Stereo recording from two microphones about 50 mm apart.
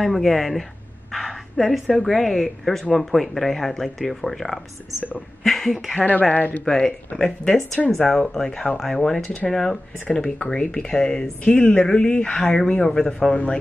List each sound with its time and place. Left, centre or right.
0.0 s speech: centre
1.1 s a sound: centre
1.9 s speech: centre
5.9 s speech: left
6.6 s speech: centre
7.8 s speech: centre
9.2 s speech: left
9.5 s speech: centre
11.4 s speech: left; by 13.3 s centre
13.3 s speech: left